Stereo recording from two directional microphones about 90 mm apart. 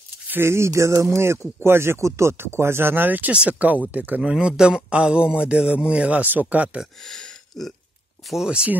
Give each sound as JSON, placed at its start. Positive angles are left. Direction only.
{"t": 0.3, "sound": "speech", "side_deg": -30}
{"t": 7.1, "sound": "a sound", "side_deg": 5}
{"t": 8.3, "sound": "speech", "side_deg": -10}